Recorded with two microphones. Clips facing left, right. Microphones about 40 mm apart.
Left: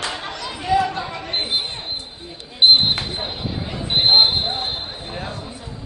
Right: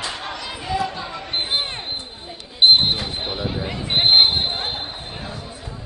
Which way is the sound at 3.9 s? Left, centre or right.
Centre.